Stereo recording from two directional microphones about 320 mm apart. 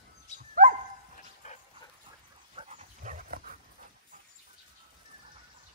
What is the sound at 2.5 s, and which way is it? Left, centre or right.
Dog, centre.